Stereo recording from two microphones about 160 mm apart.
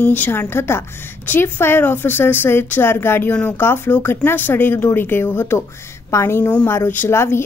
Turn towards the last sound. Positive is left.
turn(degrees=15)  # may be behind; listen again after turning